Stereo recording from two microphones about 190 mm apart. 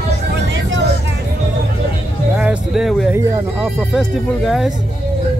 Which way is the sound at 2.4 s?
5° right (ahead or behind).